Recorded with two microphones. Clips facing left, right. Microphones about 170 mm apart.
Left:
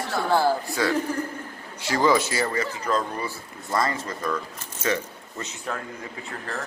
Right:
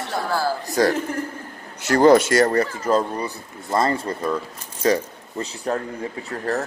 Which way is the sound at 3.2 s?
25° right (ahead or behind).